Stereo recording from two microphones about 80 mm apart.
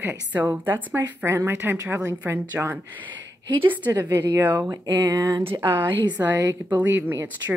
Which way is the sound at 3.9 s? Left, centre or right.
Right.